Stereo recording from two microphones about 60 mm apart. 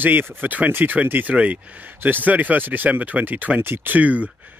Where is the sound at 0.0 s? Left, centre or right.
Right.